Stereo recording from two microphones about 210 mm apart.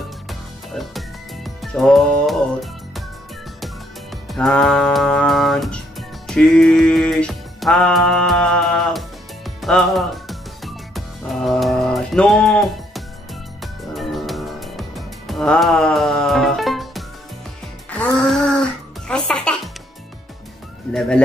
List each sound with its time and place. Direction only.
0.3 s music: centre (ahead or behind)
4.3 s music: centre (ahead or behind)